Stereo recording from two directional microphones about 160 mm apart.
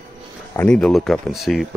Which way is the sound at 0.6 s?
5° left (ahead or behind).